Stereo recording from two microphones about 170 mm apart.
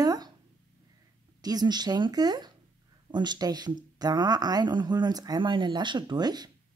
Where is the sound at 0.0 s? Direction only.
20° right (ahead or behind).